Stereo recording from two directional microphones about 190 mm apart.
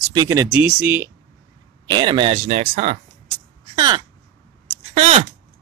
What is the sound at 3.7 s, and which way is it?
Speech, 20° right (ahead or behind).